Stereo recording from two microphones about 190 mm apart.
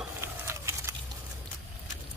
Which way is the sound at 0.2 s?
15° right (ahead or behind).